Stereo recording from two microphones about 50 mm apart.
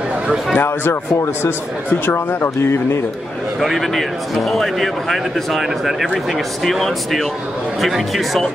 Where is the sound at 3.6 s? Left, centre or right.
Centre.